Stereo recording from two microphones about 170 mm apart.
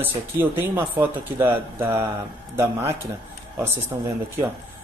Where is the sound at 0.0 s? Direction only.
10° right (ahead or behind).